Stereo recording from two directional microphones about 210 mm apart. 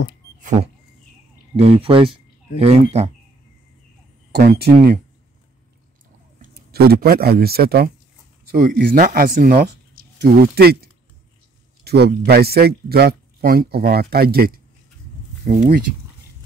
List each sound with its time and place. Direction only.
0.4 s power windows: 35° right (ahead or behind)
1.6 s speech: 30° right (ahead or behind)
4.3 s speech: 50° right (ahead or behind)
6.4 s speech: 50° right (ahead or behind)